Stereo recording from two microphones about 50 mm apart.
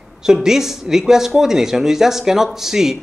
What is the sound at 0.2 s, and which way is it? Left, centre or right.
A man's voice, centre.